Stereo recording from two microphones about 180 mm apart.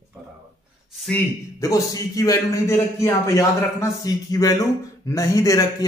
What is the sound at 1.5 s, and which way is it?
A man's voice, 20° left (ahead or behind).